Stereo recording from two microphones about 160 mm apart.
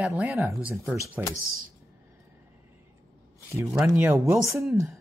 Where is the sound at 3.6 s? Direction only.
15° right (ahead or behind).